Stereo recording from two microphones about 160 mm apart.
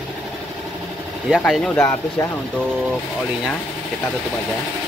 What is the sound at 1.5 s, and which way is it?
Speech, centre (ahead or behind).